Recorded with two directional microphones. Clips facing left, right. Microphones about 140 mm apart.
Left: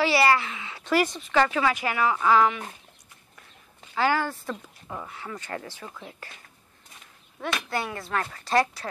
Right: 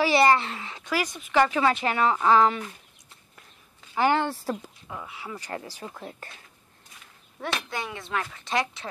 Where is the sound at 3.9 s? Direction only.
20° right (ahead or behind).